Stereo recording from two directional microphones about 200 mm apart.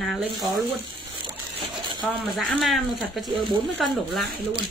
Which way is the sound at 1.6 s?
20° right (ahead or behind).